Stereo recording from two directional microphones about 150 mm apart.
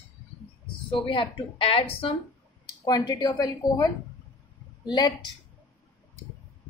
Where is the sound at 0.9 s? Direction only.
35° left (ahead or behind).